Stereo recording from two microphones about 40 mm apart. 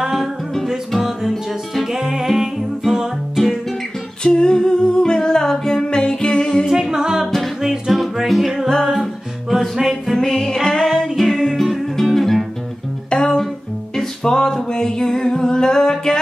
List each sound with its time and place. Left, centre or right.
0.0 s music: centre
4.2 s humming: centre
6.7 s humming: centre
7.6 s music: centre
10.1 s music: centre
11.1 s music: centre
13.1 s music: left
13.9 s singing: centre